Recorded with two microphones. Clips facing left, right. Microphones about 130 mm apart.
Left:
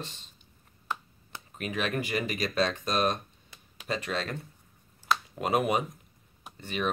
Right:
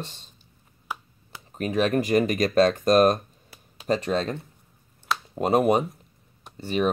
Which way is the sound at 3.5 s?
35° right (ahead or behind).